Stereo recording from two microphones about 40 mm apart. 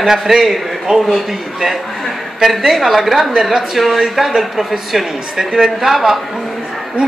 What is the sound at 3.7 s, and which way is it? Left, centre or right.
A man's voice, centre.